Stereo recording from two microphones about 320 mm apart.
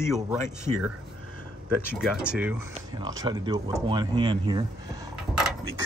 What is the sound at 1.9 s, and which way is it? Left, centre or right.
Speech, centre.